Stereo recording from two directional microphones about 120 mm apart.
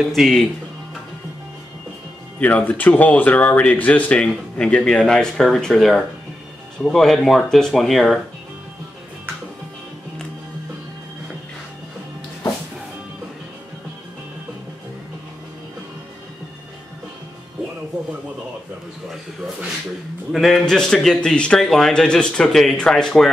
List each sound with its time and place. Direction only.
0.0 s a man's voice: centre (ahead or behind)
2.4 s a man's voice: 15° left (ahead or behind)
20.3 s a man's voice: centre (ahead or behind)